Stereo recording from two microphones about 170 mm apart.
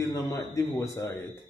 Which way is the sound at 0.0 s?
20° left (ahead or behind).